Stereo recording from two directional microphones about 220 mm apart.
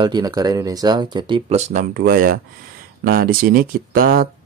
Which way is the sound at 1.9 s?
40° right (ahead or behind).